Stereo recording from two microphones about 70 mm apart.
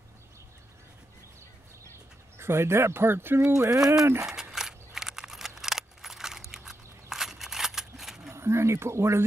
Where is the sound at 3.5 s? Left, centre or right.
Right.